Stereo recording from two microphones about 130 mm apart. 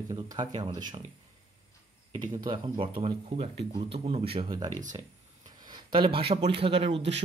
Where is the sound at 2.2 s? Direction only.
35° right (ahead or behind).